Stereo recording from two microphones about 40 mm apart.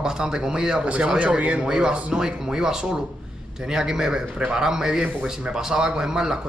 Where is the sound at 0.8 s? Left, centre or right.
Right; by 4.2 s centre.